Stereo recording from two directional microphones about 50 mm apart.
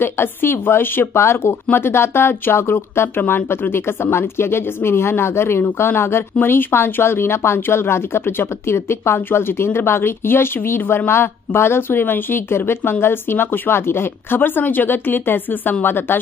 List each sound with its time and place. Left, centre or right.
0.0 s speech: left
3.2 s speech: left
6.4 s speech: left